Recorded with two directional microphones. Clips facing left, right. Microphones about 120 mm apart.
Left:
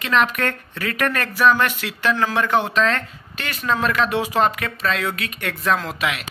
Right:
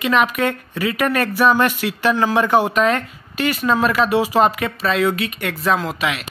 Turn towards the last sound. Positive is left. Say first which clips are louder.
# right 3 dB
turn(degrees=0)  # may be behind; listen again after turning